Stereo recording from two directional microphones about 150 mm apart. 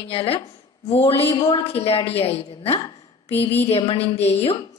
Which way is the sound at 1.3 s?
25° left (ahead or behind).